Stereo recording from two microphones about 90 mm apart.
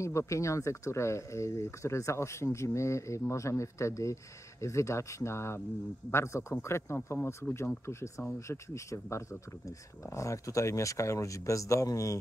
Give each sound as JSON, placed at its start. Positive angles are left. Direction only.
{"t": 0.0, "sound": "speech", "side_deg": 35}